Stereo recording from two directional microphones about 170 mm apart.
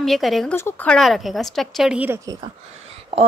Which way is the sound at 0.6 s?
10° left (ahead or behind).